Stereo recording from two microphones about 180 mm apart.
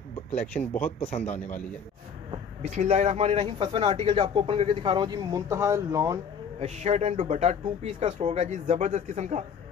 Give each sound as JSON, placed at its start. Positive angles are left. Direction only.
{"t": 0.5, "sound": "speech", "side_deg": 10}
{"t": 1.0, "sound": "a man's voice", "side_deg": 40}
{"t": 2.6, "sound": "speech", "side_deg": -40}
{"t": 6.6, "sound": "speech", "side_deg": -40}